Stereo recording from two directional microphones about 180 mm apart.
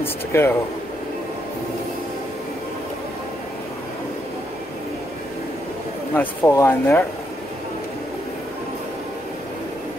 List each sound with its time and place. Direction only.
0.0 s speech: 15° left (ahead or behind)
6.1 s speech: 15° left (ahead or behind)